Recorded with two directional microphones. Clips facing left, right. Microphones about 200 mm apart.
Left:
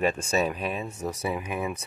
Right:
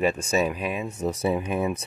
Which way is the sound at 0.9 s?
25° right (ahead or behind).